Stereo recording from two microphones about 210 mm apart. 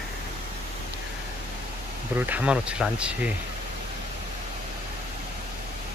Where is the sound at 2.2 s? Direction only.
5° right (ahead or behind).